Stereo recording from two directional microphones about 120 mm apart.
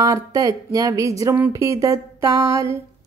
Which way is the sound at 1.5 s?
25° right (ahead or behind).